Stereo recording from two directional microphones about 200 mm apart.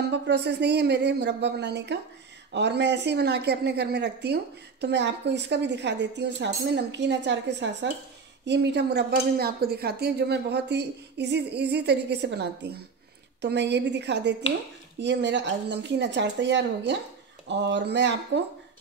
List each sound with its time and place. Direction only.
0.1 s a woman's voice: 55° right (ahead or behind)